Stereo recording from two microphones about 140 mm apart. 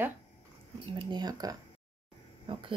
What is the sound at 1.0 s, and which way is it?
Speech, 30° right (ahead or behind).